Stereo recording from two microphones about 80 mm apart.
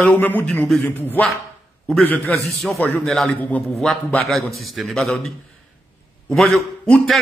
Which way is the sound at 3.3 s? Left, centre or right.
Centre.